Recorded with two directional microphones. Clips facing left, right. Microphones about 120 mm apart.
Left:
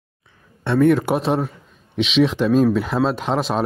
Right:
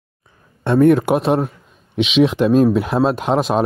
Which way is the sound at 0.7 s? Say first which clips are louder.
Right 3 dB; 45° right (ahead or behind).